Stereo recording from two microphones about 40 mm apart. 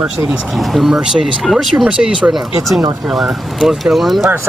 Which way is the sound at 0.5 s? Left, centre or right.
Centre.